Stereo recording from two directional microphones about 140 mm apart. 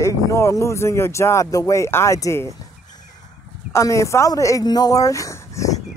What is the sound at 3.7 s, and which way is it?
Speech, 20° left (ahead or behind).